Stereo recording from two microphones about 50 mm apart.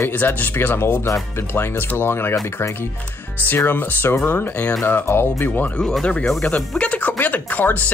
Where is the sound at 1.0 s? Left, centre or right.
Left.